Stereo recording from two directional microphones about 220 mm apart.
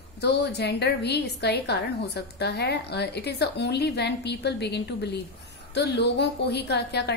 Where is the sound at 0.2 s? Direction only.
50° left (ahead or behind).